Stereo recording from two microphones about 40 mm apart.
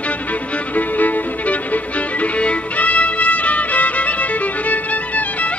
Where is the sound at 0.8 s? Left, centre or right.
Left.